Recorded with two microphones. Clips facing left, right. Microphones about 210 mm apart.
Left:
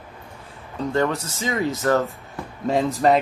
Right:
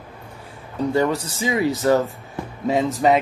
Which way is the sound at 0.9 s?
10° right (ahead or behind).